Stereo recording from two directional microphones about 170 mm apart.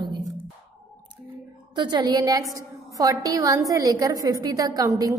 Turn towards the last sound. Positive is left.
turn(degrees=-20)  # may be behind; listen again after turning